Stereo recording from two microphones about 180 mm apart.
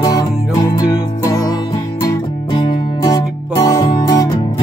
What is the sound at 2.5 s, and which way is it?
Music, 25° left (ahead or behind).